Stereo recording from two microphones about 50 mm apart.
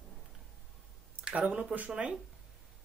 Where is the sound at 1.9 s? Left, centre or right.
Centre.